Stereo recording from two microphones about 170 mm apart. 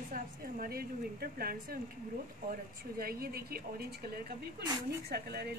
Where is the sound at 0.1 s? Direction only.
60° right (ahead or behind).